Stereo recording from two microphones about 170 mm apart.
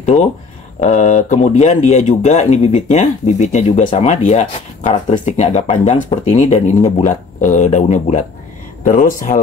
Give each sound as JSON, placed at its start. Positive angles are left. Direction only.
{"t": 0.0, "sound": "speech", "side_deg": 40}